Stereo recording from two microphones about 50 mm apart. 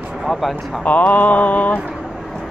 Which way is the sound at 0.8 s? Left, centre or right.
Left.